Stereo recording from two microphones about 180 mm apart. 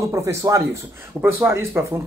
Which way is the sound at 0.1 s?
15° right (ahead or behind).